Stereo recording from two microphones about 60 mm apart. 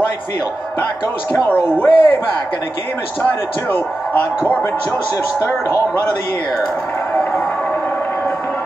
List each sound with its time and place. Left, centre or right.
1.5 s speech: left
3.7 s a man's voice: left